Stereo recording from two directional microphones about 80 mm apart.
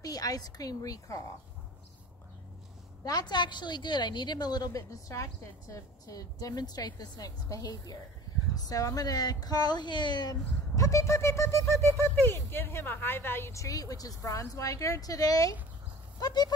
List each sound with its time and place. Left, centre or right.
0.0 s a woman's voice: left
3.1 s a woman's voice: left
10.8 s a woman's voice: left